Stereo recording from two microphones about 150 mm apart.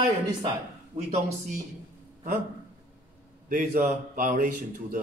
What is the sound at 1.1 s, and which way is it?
Speech, 55° right (ahead or behind).